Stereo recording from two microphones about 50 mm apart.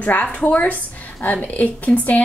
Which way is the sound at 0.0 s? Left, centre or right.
Left.